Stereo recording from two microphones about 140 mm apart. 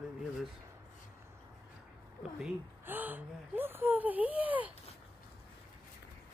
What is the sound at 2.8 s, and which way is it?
Speech, 15° right (ahead or behind).